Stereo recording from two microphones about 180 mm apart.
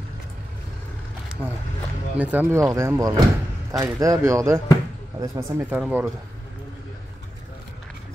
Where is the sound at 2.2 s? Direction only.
10° right (ahead or behind).